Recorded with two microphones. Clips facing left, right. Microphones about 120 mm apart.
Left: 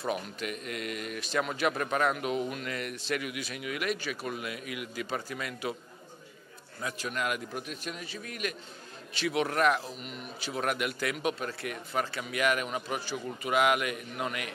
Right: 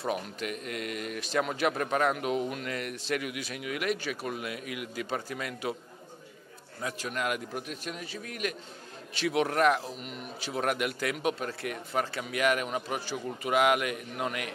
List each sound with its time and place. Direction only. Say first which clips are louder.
0.0 s a man's voice: right 1 dB; 35° right (ahead or behind)
0.4 s a man's voice: right 1 dB; 50° right (ahead or behind)
6.8 s a man's voice: right 1 dB; 40° right (ahead or behind)